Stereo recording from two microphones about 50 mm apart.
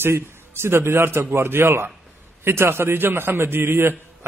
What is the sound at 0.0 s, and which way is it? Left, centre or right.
A man's voice, right.